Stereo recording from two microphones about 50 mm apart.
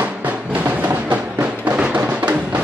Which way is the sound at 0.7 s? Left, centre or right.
Right.